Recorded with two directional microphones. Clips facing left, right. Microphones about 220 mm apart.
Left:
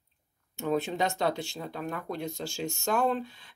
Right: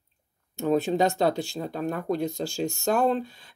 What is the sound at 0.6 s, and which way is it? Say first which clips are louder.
Speech: right 6 dB; 35° right (ahead or behind).